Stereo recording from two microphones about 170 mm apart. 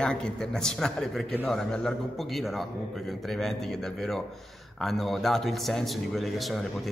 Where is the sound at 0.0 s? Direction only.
5° left (ahead or behind).